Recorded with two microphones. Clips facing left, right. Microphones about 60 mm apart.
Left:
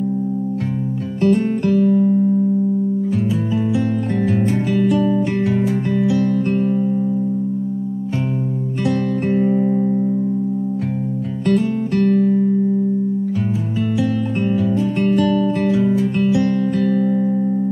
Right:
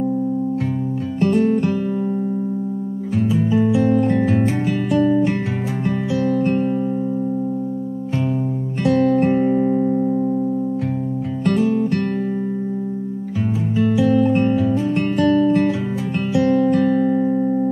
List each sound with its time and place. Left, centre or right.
1.2 s music: centre
1.7 s music: centre
3.6 s music: centre
8.8 s music: centre
11.4 s music: centre
14.0 s music: centre